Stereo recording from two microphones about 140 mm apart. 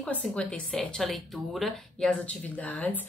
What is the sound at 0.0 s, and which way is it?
A woman's voice, 10° left (ahead or behind).